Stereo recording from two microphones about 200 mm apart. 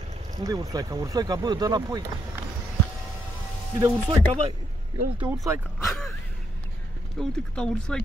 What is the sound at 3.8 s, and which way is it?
Speech, 30° right (ahead or behind).